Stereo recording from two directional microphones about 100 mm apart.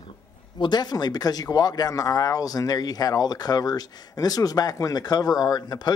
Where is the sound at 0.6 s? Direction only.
45° left (ahead or behind).